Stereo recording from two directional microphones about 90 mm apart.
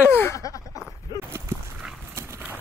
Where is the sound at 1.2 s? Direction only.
30° right (ahead or behind).